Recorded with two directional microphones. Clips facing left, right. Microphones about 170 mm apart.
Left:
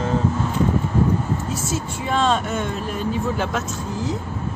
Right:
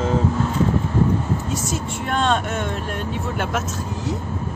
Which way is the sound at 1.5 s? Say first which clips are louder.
Even; centre (ahead or behind).